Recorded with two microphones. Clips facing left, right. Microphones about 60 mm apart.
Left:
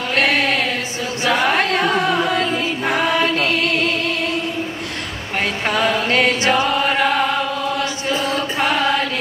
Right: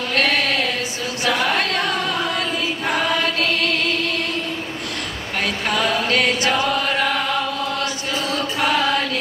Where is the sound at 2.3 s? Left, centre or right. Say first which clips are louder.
Left 4 dB; left.